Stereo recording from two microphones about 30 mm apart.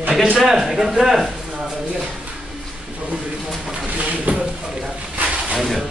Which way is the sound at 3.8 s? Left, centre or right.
Right.